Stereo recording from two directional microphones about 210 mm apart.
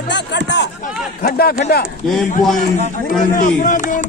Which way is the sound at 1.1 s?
45° left (ahead or behind).